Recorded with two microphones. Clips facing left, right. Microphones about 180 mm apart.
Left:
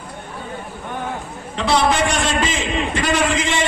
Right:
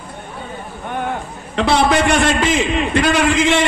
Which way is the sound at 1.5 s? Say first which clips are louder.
Right 3 dB; 60° right (ahead or behind).